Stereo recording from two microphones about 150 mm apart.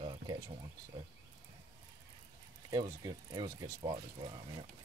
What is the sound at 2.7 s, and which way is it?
Speech, 25° right (ahead or behind).